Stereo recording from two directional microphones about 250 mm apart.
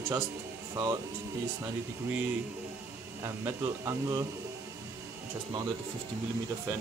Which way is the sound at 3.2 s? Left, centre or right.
Centre.